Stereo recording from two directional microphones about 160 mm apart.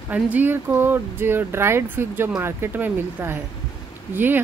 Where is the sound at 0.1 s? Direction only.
10° right (ahead or behind).